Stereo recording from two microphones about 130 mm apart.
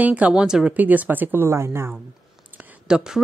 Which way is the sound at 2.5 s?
5° right (ahead or behind).